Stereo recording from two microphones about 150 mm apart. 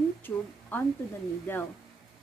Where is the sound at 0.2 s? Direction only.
10° left (ahead or behind).